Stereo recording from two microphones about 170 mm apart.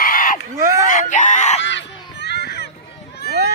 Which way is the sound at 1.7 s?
90° left.